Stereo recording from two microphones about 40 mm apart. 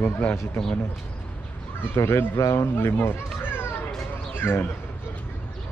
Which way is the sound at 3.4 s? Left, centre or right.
Left.